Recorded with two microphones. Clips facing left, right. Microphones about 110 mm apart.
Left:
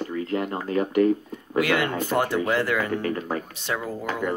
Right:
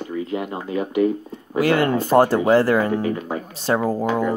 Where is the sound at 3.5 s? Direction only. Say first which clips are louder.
Right 9 dB; 35° right (ahead or behind).